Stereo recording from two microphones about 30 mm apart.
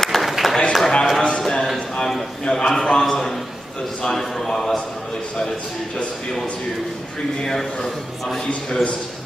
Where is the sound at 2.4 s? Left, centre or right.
Centre.